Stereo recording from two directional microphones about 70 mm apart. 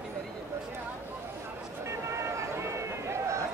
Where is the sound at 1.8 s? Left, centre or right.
Right.